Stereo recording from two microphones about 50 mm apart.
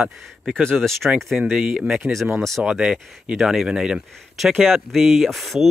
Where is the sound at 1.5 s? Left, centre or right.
Centre.